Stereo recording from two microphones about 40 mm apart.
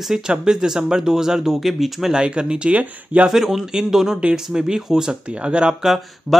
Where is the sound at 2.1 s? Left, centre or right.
Right.